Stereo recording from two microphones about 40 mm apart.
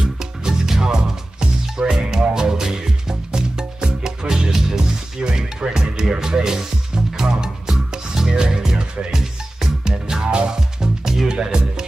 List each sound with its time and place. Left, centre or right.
0.0 s music: centre